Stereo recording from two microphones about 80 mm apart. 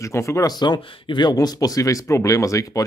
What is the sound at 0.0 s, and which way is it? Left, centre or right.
Speech, left.